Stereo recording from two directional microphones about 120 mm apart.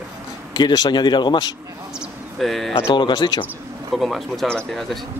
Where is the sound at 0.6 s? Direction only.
40° left (ahead or behind).